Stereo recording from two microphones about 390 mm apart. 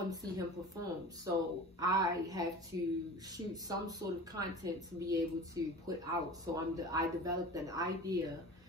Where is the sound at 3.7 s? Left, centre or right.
Centre.